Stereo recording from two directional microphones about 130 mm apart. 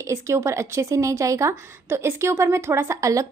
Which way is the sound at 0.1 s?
20° right (ahead or behind).